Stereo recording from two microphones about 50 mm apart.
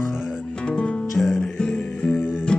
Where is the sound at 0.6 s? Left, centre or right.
Centre.